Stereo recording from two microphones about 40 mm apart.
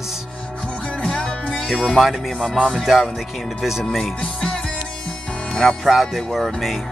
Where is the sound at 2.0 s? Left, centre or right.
Centre.